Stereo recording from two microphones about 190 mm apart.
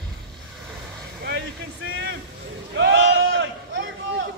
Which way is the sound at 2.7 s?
70° right (ahead or behind).